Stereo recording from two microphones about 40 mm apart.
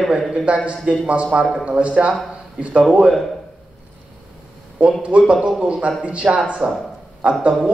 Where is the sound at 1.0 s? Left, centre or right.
Right.